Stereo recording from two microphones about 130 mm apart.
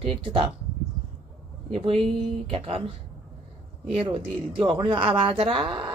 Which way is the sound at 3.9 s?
40° right (ahead or behind).